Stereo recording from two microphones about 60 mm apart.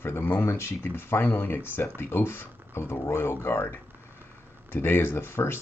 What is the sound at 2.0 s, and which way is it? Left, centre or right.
Speech, left.